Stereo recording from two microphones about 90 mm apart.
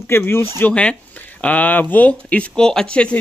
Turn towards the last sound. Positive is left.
turn(degrees=10)  # may be behind; listen again after turning